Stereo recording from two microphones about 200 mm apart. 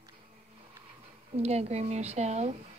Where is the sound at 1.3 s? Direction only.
30° right (ahead or behind).